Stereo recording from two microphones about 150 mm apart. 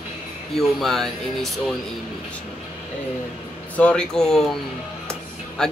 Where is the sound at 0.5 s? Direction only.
Centre (ahead or behind).